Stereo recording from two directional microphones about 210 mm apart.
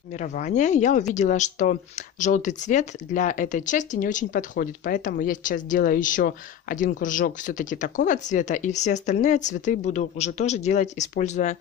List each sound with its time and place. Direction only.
0.1 s speech: 35° left (ahead or behind)